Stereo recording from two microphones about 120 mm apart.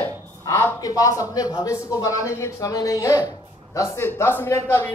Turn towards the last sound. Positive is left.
turn(degrees=20)  # may be behind; listen again after turning